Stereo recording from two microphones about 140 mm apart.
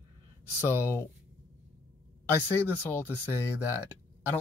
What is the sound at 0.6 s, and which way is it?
Speech, 15° left (ahead or behind).